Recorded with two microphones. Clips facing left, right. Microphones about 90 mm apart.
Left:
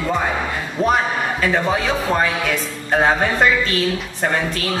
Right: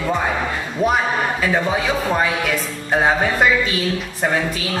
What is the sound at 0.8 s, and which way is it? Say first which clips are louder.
Speech: left 1 dB; 5° right (ahead or behind).